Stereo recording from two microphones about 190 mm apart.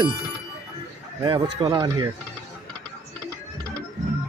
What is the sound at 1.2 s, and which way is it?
Speech, 20° right (ahead or behind).